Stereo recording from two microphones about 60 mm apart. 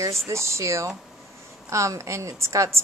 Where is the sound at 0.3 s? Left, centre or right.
Right.